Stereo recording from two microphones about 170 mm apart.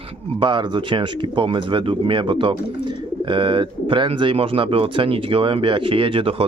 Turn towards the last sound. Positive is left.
turn(degrees=-30)  # may be behind; listen again after turning